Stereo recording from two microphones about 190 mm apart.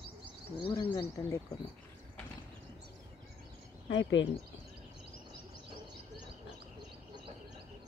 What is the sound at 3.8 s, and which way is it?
Speech, 70° left (ahead or behind).